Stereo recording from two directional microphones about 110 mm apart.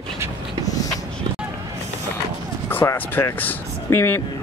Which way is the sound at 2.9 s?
20° left (ahead or behind).